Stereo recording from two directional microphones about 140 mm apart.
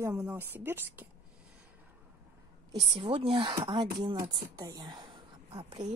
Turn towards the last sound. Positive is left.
turn(degrees=-30)  # may be behind; listen again after turning